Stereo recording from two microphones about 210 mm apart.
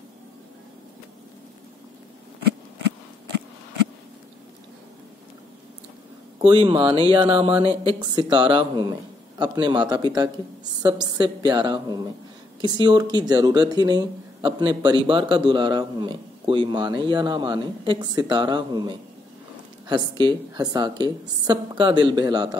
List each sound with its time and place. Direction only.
6.4 s speech: 25° right (ahead or behind)